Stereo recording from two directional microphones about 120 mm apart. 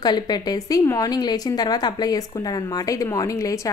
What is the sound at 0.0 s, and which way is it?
A woman's voice, 35° left (ahead or behind).